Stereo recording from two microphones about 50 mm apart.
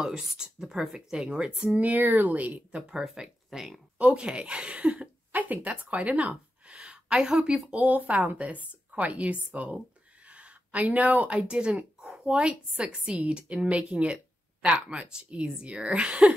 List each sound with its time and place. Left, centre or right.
0.0 s speech: centre
1.8 s speech: right
3.4 s speech: centre
4.0 s a woman's voice: right
6.7 s a woman's voice: centre
10.2 s a sound: right
11.5 s a woman's voice: centre